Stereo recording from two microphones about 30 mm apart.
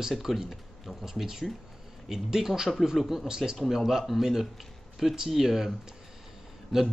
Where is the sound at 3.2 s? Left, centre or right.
Right.